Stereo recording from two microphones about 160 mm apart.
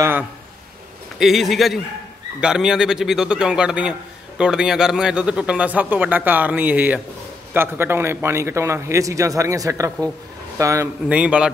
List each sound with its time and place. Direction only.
1.2 s a man's voice: centre (ahead or behind); by 10.9 s 20° right (ahead or behind)
11.1 s a man's voice: 5° right (ahead or behind)